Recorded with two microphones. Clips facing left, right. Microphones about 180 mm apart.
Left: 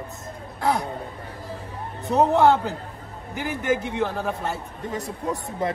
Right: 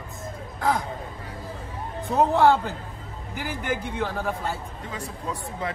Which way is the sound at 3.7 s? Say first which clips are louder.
Left 3 dB; 20° left (ahead or behind).